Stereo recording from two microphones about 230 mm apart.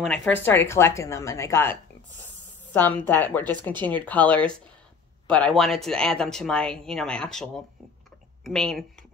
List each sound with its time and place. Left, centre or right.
0.0 s a woman's voice: centre